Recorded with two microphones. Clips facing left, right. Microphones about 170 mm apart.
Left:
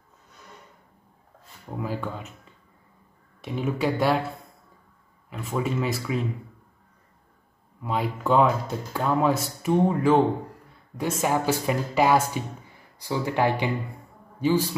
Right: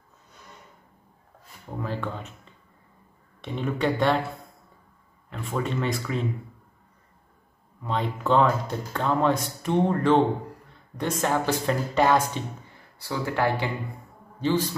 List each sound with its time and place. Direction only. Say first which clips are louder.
1.7 s speech: left 1 dB; 10° left (ahead or behind)
5.3 s speech: left 1 dB; 5° left (ahead or behind)
7.8 s speech: left 1 dB; 5° left (ahead or behind)